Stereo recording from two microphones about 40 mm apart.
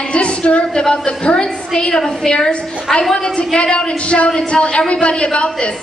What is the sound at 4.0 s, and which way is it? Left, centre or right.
A woman's voice, left.